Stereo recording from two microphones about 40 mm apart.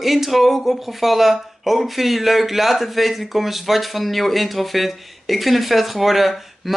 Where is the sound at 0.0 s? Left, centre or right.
Centre.